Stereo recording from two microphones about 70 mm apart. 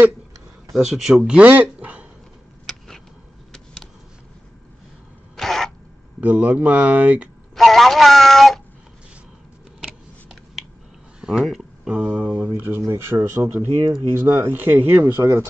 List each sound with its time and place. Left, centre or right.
0.7 s speech: centre; by 2.0 s right
5.3 s a sound: centre
6.2 s speech: right
7.5 s speech: centre
11.1 s speech: centre
12.5 s speech: right
14.2 s speech: right
15.0 s speech: right